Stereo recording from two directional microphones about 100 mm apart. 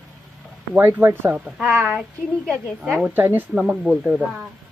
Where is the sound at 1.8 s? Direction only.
5° right (ahead or behind).